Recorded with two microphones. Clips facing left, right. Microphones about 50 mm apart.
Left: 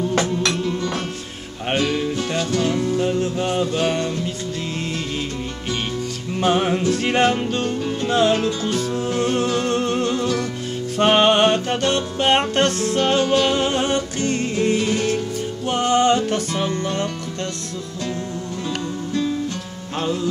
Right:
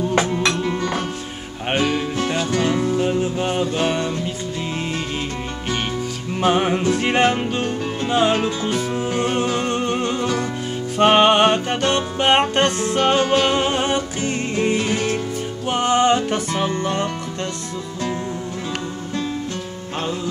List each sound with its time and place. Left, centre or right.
1.7 s music: centre
6.4 s music: centre